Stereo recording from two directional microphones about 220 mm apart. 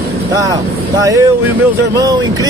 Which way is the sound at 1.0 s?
15° right (ahead or behind).